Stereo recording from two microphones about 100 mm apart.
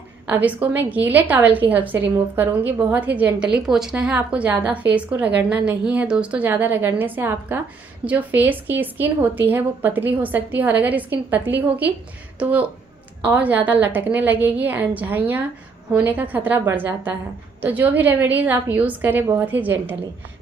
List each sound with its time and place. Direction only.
0.3 s a woman's voice: 15° right (ahead or behind)